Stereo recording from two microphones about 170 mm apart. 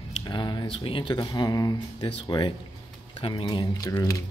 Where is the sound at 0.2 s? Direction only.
25° left (ahead or behind).